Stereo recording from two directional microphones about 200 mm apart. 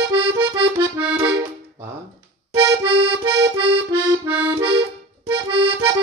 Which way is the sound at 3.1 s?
20° right (ahead or behind).